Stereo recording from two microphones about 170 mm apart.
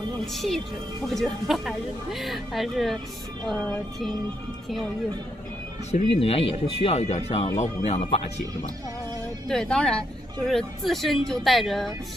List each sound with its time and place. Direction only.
0.3 s speech: centre (ahead or behind)
5.9 s speech: 40° left (ahead or behind)
9.5 s speech: 5° left (ahead or behind)